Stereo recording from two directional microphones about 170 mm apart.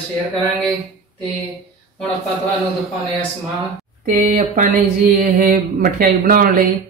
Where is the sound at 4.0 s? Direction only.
45° right (ahead or behind).